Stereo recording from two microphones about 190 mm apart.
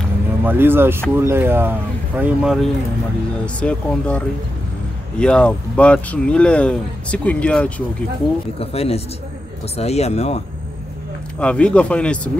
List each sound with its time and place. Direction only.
0.4 s speech: 10° right (ahead or behind); by 4.2 s 5° left (ahead or behind)
5.2 s speech: 5° left (ahead or behind)
8.5 s speech: 30° left (ahead or behind)
11.3 s speech: 5° left (ahead or behind)